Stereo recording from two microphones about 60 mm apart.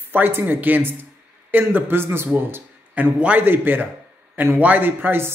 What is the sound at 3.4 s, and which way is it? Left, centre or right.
Speech, right.